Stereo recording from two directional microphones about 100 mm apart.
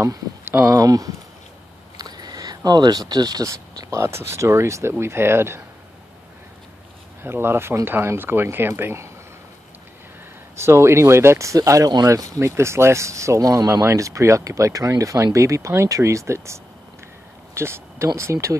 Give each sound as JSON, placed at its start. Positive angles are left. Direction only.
{"t": 0.5, "sound": "speech", "side_deg": -20}
{"t": 0.7, "sound": "speech", "side_deg": -35}
{"t": 7.2, "sound": "speech", "side_deg": -25}
{"t": 10.5, "sound": "speech", "side_deg": -25}